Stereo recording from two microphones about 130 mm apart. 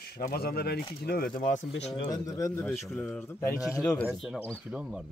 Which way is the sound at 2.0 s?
25° left (ahead or behind).